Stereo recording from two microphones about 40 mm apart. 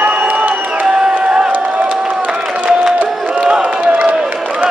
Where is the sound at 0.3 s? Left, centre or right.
Right.